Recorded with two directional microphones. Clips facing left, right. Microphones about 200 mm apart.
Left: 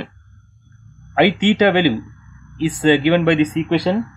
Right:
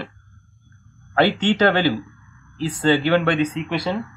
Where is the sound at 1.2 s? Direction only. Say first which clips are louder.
Left 3 dB; 15° left (ahead or behind).